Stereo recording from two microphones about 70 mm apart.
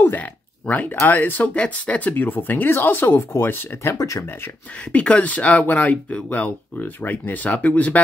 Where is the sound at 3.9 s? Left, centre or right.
Left.